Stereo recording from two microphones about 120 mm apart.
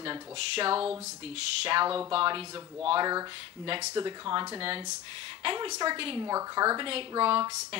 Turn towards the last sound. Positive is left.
turn(degrees=-40)  # may be behind; listen again after turning